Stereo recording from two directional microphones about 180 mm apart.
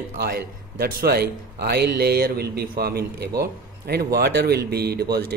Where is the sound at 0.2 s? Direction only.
60° right (ahead or behind).